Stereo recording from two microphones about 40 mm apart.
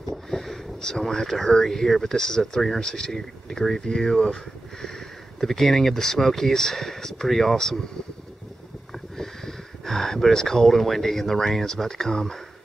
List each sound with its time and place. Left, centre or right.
0.1 s speech: centre
5.4 s speech: centre
9.1 s speech: centre